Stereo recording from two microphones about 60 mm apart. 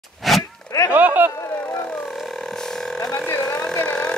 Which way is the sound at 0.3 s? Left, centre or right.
Centre.